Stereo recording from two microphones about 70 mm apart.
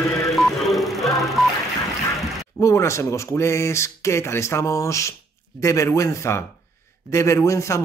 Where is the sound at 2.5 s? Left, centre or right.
Left.